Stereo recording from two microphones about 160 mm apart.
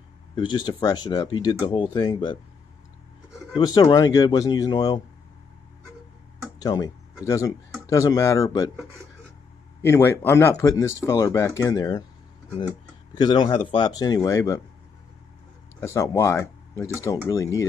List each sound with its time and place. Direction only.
0.4 s speech: 25° left (ahead or behind)
3.5 s speech: 25° left (ahead or behind)
6.6 s speech: 25° left (ahead or behind)
9.8 s speech: 15° left (ahead or behind)
13.1 s speech: 30° left (ahead or behind)
15.8 s speech: 15° left (ahead or behind)